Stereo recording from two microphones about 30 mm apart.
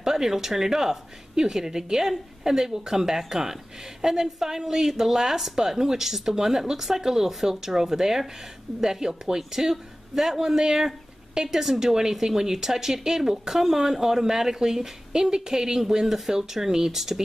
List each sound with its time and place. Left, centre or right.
0.0 s a man's voice: centre